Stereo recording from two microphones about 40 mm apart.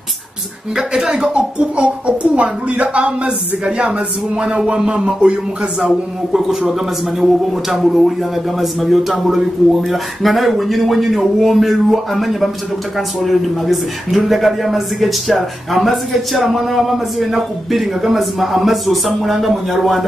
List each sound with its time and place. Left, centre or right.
0.7 s speech: centre
1.2 s speech: right
6.6 s speech: centre